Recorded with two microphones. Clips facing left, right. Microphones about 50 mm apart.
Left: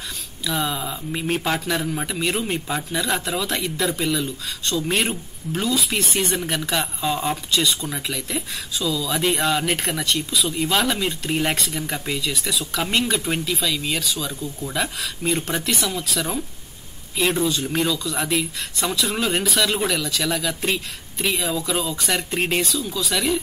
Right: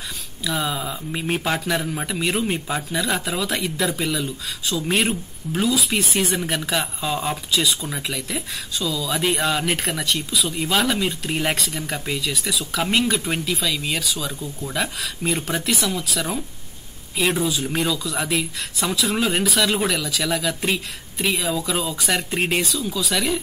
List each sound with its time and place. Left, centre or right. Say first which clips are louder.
0.4 s speech: even; centre